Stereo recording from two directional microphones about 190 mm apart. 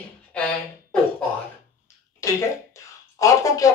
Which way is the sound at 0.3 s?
5° left (ahead or behind).